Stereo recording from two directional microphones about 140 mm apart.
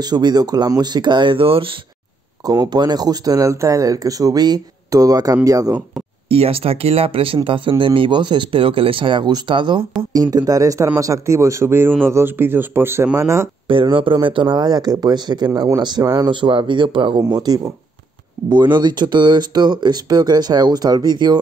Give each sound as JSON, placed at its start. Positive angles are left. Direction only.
{"t": 0.0, "sound": "speech", "side_deg": -30}
{"t": 2.4, "sound": "speech", "side_deg": -30}
{"t": 6.2, "sound": "a man's voice", "side_deg": -45}
{"t": 13.7, "sound": "speech", "side_deg": -40}